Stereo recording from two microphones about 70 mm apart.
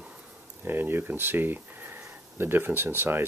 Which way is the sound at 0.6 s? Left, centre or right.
Right.